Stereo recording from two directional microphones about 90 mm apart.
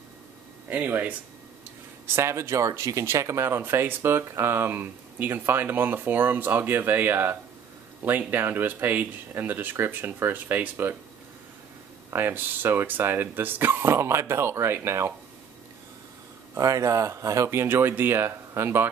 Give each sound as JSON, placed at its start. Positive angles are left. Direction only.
{"t": 0.7, "sound": "speech", "side_deg": -20}
{"t": 2.1, "sound": "speech", "side_deg": -30}
{"t": 12.1, "sound": "speech", "side_deg": -25}
{"t": 16.5, "sound": "speech", "side_deg": -40}